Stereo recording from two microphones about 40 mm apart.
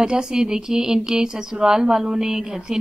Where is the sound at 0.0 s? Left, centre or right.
Centre.